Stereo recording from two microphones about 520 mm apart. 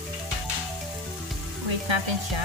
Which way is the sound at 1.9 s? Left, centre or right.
Right.